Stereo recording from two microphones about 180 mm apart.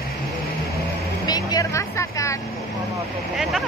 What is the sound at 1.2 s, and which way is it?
Speech, 20° left (ahead or behind).